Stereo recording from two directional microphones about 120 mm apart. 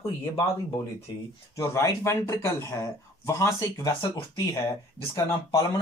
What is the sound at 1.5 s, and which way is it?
Speech, 25° left (ahead or behind).